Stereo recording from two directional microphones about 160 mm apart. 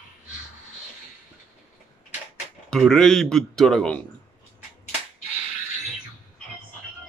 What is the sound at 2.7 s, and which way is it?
Speech, 5° left (ahead or behind).